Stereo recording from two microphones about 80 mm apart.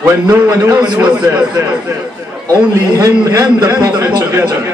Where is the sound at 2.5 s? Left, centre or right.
Right.